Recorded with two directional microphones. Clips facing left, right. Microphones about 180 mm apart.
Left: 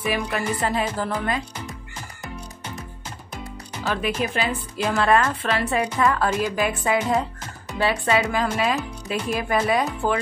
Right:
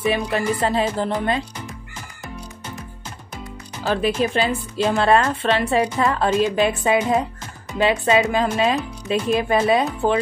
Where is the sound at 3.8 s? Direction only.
30° right (ahead or behind).